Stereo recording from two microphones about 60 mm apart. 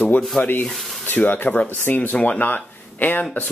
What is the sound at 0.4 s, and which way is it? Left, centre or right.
Sanding, left.